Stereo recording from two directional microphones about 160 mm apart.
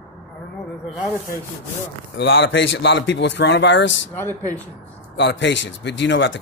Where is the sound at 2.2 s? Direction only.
90° left.